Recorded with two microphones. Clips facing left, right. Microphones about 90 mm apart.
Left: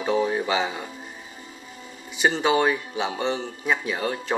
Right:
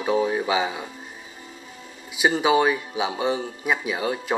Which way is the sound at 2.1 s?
5° right (ahead or behind).